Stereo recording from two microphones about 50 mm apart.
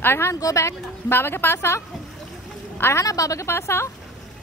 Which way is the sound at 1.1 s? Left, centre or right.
Left.